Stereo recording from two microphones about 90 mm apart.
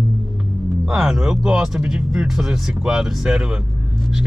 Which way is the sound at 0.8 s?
5° right (ahead or behind).